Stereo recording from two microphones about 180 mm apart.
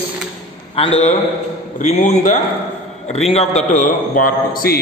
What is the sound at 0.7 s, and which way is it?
A man's voice, 30° left (ahead or behind).